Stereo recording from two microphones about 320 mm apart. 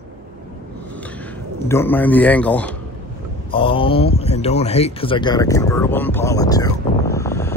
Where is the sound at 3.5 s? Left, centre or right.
Centre.